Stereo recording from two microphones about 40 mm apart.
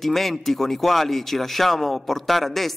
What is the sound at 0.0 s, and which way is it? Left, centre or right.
Speech, centre.